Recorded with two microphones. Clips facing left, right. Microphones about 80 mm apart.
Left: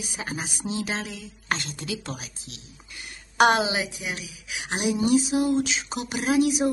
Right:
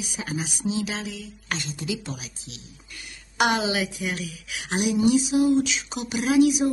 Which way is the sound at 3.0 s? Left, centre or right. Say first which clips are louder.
Left 4 dB; left.